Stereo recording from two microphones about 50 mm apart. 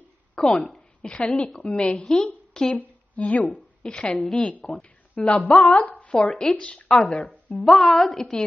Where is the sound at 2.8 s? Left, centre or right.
Left.